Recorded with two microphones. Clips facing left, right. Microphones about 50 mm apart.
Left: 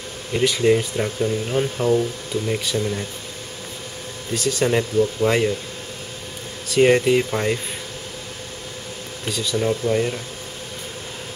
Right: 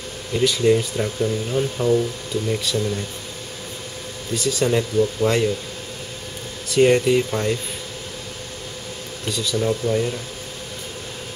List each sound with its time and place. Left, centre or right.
0.3 s speech: left
4.6 s speech: centre
6.7 s speech: centre
9.2 s speech: centre